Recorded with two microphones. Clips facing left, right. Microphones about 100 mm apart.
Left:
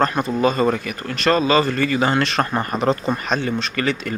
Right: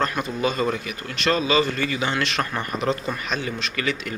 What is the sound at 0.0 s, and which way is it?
Speech, 40° left (ahead or behind).